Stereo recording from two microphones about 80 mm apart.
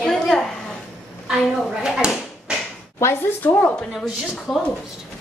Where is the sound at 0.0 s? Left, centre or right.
Centre.